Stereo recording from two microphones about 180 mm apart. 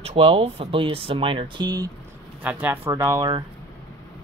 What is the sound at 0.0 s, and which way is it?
Speech, 35° right (ahead or behind).